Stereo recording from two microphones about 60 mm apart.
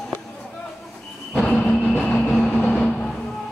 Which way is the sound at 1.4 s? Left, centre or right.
Centre.